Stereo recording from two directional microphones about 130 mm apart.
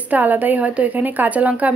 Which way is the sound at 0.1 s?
15° right (ahead or behind).